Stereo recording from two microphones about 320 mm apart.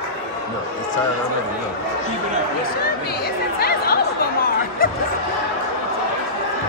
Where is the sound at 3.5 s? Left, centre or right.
Left.